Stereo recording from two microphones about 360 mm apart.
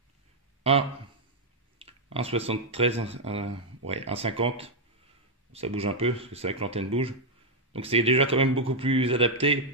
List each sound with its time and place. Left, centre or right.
1.8 s speech: centre